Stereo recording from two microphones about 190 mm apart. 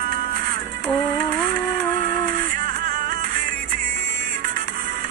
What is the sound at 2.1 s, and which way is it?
Music, 45° right (ahead or behind).